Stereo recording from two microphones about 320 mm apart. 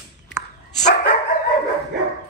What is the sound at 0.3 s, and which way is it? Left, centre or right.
Dog, left.